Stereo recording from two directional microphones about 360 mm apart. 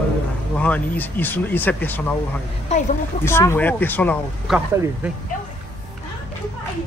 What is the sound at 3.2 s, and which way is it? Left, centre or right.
Speech, centre.